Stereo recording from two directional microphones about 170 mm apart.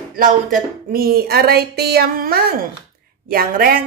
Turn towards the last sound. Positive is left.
turn(degrees=-60)  # may be behind; listen again after turning